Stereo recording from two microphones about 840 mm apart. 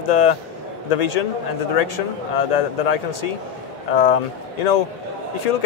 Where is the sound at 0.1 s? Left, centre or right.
Left.